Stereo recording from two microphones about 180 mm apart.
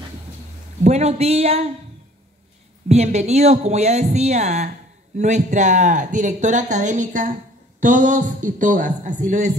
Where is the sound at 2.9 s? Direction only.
35° right (ahead or behind).